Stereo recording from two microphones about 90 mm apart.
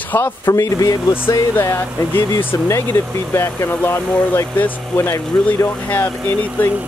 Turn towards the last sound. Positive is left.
turn(degrees=15)  # may be behind; listen again after turning